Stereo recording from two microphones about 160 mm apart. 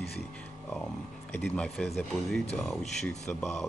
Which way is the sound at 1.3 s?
10° left (ahead or behind).